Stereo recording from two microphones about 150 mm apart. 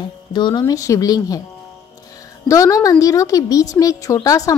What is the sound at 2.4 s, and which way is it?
A woman's voice, 20° left (ahead or behind).